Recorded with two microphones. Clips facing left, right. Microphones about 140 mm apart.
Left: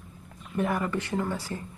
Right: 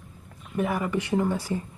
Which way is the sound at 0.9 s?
15° right (ahead or behind).